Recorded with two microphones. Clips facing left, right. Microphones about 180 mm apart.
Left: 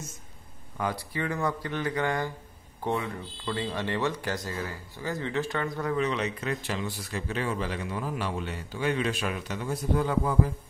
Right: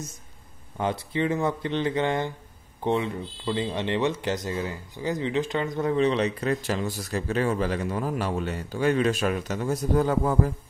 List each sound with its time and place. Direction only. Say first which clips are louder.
0.7 s speech: right 5 dB; 25° right (ahead or behind); by 10.5 s 45° right (ahead or behind)